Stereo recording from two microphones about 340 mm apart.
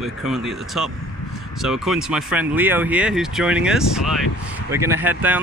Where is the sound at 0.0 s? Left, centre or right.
Centre.